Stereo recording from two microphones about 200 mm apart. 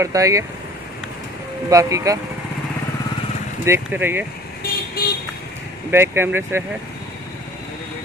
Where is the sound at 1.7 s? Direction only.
15° right (ahead or behind).